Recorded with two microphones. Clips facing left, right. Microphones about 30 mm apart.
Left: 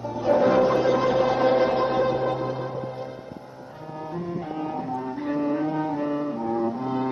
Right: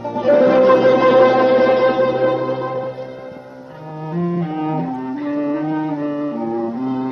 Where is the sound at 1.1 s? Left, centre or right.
Right.